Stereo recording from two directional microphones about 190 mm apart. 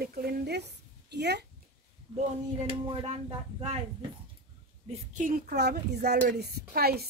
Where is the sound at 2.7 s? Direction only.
30° right (ahead or behind).